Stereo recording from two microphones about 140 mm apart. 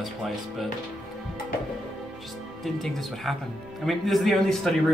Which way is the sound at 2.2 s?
Centre (ahead or behind).